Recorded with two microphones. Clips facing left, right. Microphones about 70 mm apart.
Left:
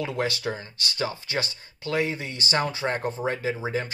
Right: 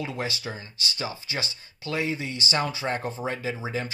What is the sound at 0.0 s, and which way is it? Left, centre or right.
Speech, left.